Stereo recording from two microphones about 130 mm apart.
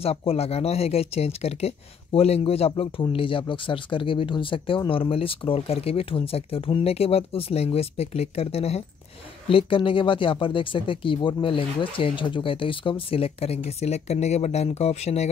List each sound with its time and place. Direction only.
0.0 s speech: 50° left (ahead or behind)